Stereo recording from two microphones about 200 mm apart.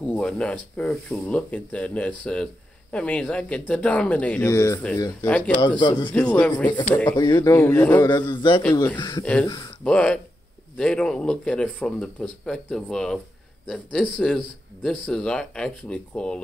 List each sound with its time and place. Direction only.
0.1 s speech: 5° left (ahead or behind); by 6.1 s 20° left (ahead or behind)
6.1 s speech: 5° left (ahead or behind)
8.3 s speech: 25° left (ahead or behind)
9.2 s speech: 5° left (ahead or behind)